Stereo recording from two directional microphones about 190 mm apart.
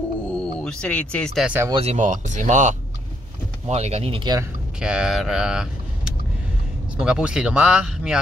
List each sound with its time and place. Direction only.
0.3 s speech: 5° left (ahead or behind)
1.7 s speech: 30° right (ahead or behind)
4.7 s speech: 5° right (ahead or behind)